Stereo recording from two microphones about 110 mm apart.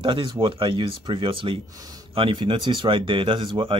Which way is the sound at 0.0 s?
45° right (ahead or behind).